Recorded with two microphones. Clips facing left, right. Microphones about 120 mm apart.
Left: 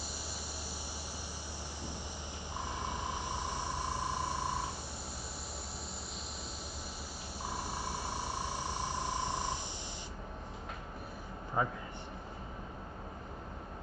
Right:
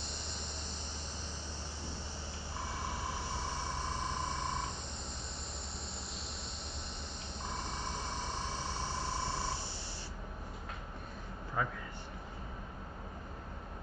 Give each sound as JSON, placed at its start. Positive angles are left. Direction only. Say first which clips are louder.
{"t": 2.5, "sound": "vehicle", "louder": "left 2 dB", "side_deg": 15}
{"t": 7.4, "sound": "vehicle", "louder": "left 2 dB", "side_deg": 10}
{"t": 11.6, "sound": "a man's voice", "louder": "left 3 dB", "side_deg": 25}